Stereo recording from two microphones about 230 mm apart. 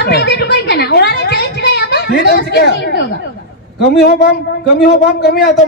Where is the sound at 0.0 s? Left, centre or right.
Left.